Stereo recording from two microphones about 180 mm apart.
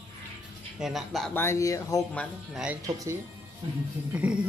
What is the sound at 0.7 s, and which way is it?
Speech, centre (ahead or behind).